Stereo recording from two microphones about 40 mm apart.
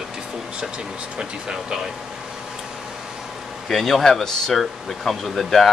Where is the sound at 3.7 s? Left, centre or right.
Centre.